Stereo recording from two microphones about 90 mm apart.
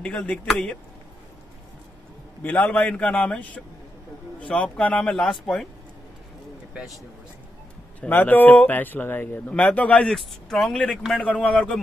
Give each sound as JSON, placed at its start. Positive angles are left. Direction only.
{"t": 0.0, "sound": "a man's voice", "side_deg": 10}
{"t": 2.4, "sound": "a man's voice", "side_deg": 20}
{"t": 8.1, "sound": "a man's voice", "side_deg": 20}